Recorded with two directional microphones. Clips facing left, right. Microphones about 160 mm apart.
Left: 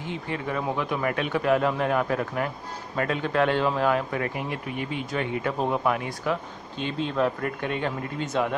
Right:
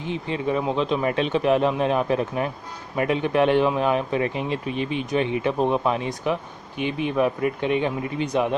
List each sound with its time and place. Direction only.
0.0 s speech: 20° right (ahead or behind)